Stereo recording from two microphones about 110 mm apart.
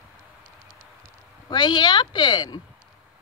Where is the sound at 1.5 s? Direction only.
45° left (ahead or behind).